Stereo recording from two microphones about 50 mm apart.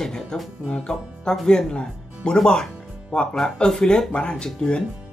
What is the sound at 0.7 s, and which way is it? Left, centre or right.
Speech, centre.